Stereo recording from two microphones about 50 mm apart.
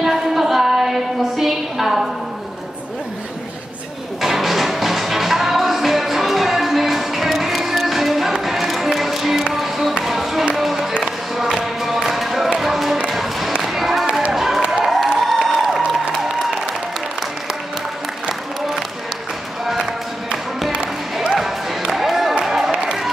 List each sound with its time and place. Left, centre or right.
0.0 s a sound: centre
4.2 s music: centre
14.3 s applause: centre
14.9 s music: centre
20.7 s music: centre
21.4 s music: centre
22.4 s a sound: centre